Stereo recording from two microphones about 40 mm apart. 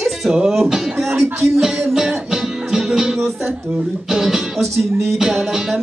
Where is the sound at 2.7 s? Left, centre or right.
Centre.